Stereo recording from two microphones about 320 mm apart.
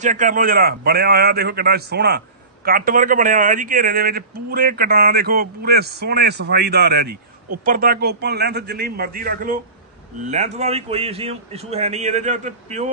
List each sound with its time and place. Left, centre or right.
0.0 s a man's voice: right